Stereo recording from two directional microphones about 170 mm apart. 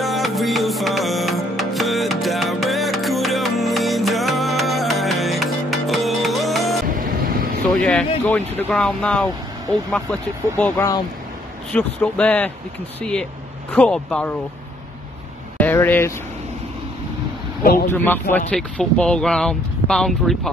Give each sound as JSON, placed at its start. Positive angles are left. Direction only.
{"t": 0.0, "sound": "music", "side_deg": 0}
{"t": 7.0, "sound": "vehicle", "side_deg": -60}
{"t": 7.7, "sound": "vehicle", "side_deg": 5}
{"t": 8.3, "sound": "speech", "side_deg": 10}
{"t": 10.6, "sound": "speech", "side_deg": 15}
{"t": 13.7, "sound": "speech", "side_deg": 5}
{"t": 15.5, "sound": "vehicle", "side_deg": 10}
{"t": 17.8, "sound": "speech", "side_deg": 10}